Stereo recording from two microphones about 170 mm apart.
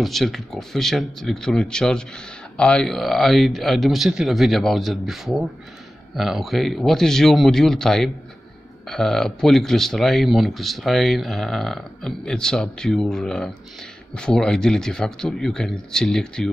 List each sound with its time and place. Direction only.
0.0 s speech: centre (ahead or behind)